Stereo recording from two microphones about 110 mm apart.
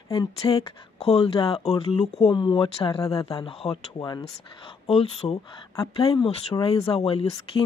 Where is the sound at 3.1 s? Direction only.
60° left (ahead or behind).